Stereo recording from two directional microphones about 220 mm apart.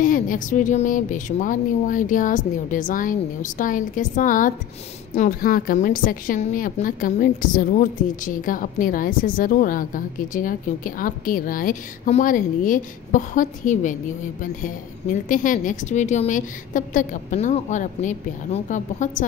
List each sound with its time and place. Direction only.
0.0 s a woman's voice: 40° left (ahead or behind)
15.2 s a woman's voice: 35° left (ahead or behind)